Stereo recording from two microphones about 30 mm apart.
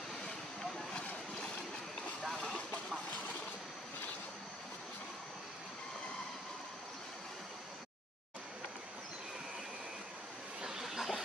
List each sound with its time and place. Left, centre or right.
2.3 s vehicle: left
10.8 s train: centre